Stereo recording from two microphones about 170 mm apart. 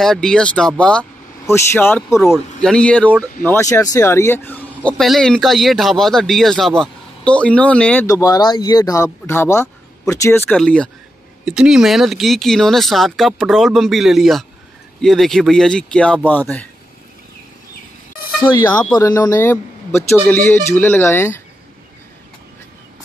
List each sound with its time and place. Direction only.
0.0 s speech: centre (ahead or behind)
8.1 s speech: 20° left (ahead or behind)
11.4 s speech: 5° right (ahead or behind)
18.4 s speech: 20° left (ahead or behind)